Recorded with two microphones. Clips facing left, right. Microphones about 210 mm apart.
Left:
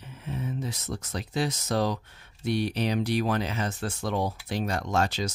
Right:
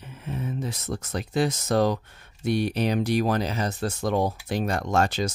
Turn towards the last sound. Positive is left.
turn(degrees=-50)  # may be behind; listen again after turning